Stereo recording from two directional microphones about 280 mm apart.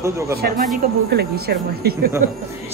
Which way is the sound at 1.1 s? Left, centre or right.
Right.